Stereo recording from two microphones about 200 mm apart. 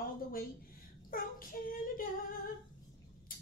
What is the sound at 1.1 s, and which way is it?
Speech, 45° left (ahead or behind).